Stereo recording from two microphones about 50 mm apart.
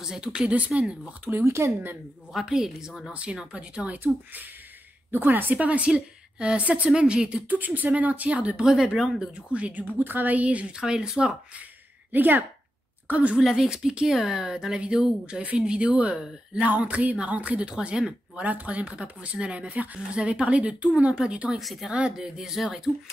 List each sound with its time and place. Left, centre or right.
0.0 s speech: centre
1.4 s speech: right
2.3 s speech: centre
3.1 s speech: right
4.0 s speech: right; by 7.4 s centre
7.4 s speech: right
8.6 s speech: centre
9.5 s speech: right
10.8 s speech: centre
12.1 s speech: right
13.1 s speech: right
13.4 s speech: centre
18.4 s speech: right
21.5 s speech: centre